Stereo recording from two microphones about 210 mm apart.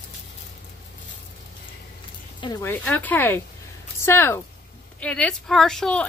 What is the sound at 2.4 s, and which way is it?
Speech, 15° left (ahead or behind).